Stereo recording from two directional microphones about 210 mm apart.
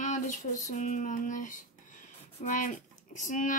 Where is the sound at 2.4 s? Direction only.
35° left (ahead or behind).